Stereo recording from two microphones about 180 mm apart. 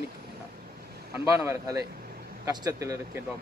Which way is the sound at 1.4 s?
20° right (ahead or behind).